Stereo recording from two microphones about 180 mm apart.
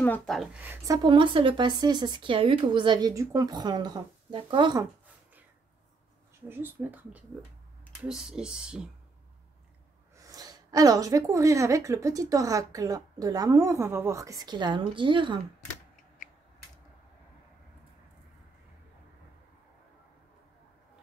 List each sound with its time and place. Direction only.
0.0 s speech: 10° left (ahead or behind)
0.4 s a woman's voice: 5° right (ahead or behind); by 4.8 s 25° right (ahead or behind)
6.5 s speech: 10° right (ahead or behind)
10.1 s a woman's voice: 20° right (ahead or behind)